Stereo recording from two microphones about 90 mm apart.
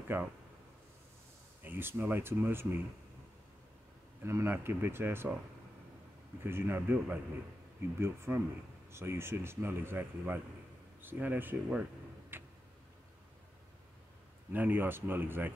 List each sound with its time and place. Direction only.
0.1 s speech: 20° right (ahead or behind)
1.6 s speech: 25° right (ahead or behind)
4.2 s speech: 30° right (ahead or behind)
6.4 s speech: 25° right (ahead or behind)
12.3 s tick-tock: 25° right (ahead or behind)
14.5 s speech: 20° right (ahead or behind)